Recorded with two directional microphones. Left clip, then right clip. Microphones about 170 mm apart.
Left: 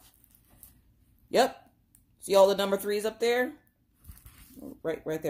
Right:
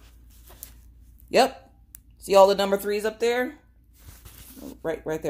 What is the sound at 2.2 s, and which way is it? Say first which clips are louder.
Speech: right 5 dB; 5° right (ahead or behind).